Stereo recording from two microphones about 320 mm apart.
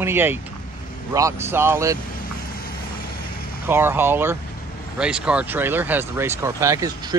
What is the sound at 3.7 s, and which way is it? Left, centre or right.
Speech, centre.